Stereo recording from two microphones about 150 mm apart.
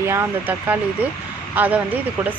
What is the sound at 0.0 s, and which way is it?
Speech, 15° right (ahead or behind).